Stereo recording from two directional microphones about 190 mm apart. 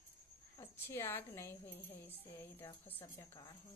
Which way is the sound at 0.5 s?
10° left (ahead or behind).